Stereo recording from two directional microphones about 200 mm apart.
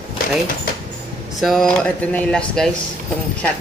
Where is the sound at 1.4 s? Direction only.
Centre (ahead or behind).